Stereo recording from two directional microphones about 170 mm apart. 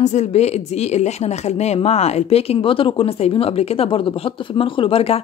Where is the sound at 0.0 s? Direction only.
40° left (ahead or behind).